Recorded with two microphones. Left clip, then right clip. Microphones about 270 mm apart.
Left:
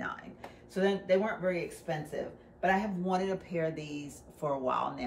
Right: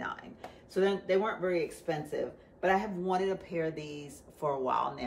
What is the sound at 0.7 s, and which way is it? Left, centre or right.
Speech, centre.